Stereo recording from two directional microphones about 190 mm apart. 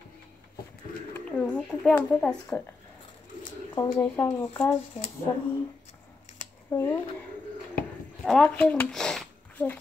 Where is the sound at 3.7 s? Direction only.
20° left (ahead or behind).